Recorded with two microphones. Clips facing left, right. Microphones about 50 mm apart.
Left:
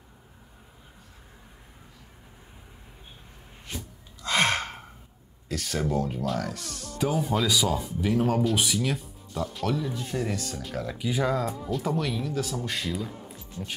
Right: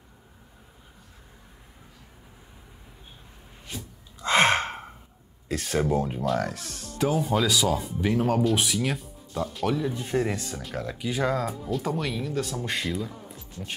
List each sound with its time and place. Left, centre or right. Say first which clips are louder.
4.2 s gasp: right 4 dB; centre
5.5 s speech: right 3 dB; right
6.4 s speech: right 2 dB; centre
9.9 s speech: right 3 dB; right
10.6 s speech: even; centre